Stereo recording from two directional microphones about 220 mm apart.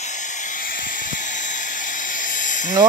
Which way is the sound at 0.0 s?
35° left (ahead or behind).